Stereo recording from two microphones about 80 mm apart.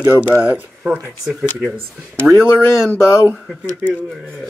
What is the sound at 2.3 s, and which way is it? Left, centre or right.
Speech, left.